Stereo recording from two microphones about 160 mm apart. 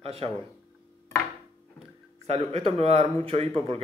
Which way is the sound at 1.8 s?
35° right (ahead or behind).